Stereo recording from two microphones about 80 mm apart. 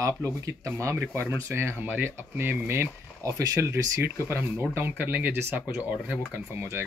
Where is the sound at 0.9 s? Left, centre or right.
Right.